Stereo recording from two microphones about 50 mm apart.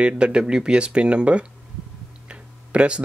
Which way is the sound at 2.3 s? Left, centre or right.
Right.